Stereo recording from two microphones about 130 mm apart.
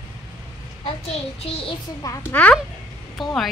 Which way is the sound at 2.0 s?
15° left (ahead or behind).